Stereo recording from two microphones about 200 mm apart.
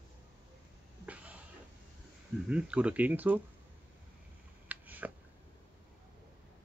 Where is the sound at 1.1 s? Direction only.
5° right (ahead or behind).